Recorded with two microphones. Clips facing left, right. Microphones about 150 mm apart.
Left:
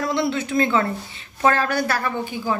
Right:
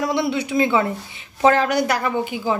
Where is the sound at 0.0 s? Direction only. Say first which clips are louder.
Right 1 dB; 15° right (ahead or behind).